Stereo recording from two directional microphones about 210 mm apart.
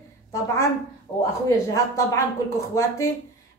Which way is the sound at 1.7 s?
15° left (ahead or behind).